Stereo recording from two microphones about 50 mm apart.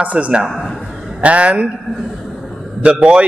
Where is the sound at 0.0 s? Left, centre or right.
Right.